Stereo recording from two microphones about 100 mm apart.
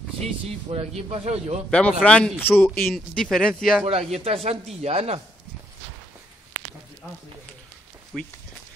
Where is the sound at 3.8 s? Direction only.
90° right.